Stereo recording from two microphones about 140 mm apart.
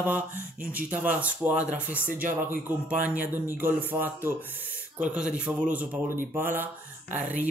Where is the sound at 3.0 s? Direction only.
15° right (ahead or behind).